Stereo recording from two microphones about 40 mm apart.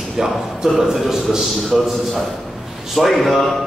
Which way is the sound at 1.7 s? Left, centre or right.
Centre.